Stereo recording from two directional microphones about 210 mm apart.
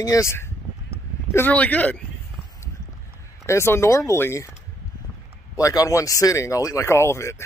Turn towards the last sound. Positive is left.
turn(degrees=15)  # may be behind; listen again after turning